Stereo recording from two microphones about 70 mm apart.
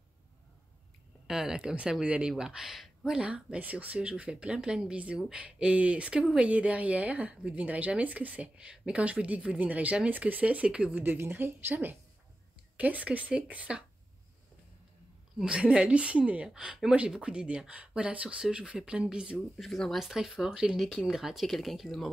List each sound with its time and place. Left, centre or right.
1.2 s speech: centre
3.2 s a woman's voice: centre
11.0 s a woman's voice: right
15.3 s speech: centre
16.4 s speech: centre
19.5 s speech: centre